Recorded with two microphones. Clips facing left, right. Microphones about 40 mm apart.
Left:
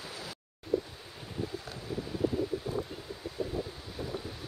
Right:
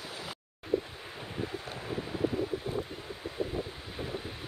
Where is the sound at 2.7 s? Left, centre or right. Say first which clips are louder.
Even; right.